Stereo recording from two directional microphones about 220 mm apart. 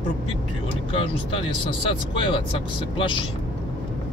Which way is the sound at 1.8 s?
20° left (ahead or behind).